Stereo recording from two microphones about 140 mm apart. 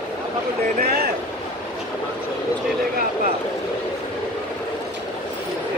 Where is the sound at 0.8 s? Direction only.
90° right.